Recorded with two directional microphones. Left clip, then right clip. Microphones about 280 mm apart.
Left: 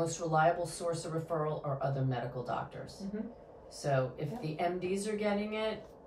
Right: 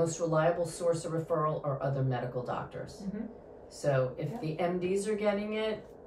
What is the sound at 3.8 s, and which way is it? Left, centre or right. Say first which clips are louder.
Speech: right 3 dB; centre.